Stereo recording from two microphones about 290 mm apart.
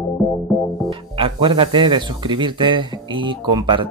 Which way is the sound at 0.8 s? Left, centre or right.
Centre.